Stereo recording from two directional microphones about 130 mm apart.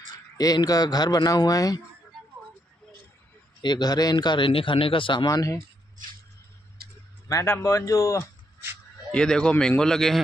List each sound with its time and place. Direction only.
0.4 s speech: 30° left (ahead or behind)
3.6 s a man's voice: 35° left (ahead or behind)
5.2 s speech: 25° left (ahead or behind)
7.2 s speech: 20° left (ahead or behind)
9.1 s a man's voice: 5° left (ahead or behind)